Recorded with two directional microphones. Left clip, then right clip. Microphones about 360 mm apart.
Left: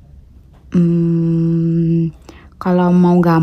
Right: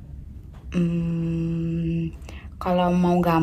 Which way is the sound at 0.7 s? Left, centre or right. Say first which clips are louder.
Left 11 dB; left.